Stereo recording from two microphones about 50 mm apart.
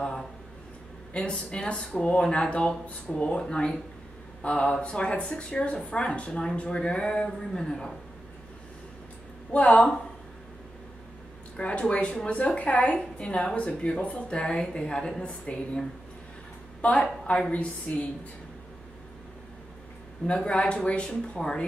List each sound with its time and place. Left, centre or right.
0.0 s a woman's voice: centre
9.5 s a woman's voice: left
11.5 s a woman's voice: left
16.8 s a woman's voice: left
20.2 s a woman's voice: left